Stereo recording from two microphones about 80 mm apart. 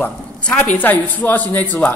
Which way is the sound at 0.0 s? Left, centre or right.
Centre.